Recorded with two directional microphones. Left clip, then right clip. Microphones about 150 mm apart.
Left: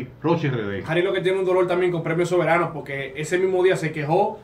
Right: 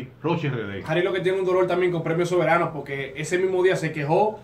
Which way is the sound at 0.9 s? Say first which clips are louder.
Left 1 dB; 15° left (ahead or behind).